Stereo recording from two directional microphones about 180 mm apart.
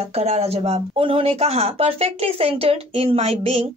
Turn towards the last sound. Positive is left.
turn(degrees=-35)  # may be behind; listen again after turning